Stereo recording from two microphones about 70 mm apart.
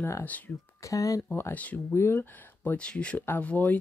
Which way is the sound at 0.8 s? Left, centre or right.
Left.